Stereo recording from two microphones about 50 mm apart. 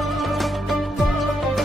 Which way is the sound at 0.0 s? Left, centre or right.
Centre.